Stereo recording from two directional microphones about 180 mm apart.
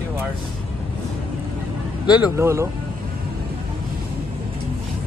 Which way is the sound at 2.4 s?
15° right (ahead or behind).